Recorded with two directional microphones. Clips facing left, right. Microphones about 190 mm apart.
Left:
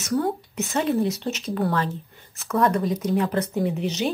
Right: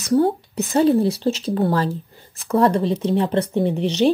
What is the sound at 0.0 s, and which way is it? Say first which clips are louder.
Speech: right 6 dB; 30° right (ahead or behind).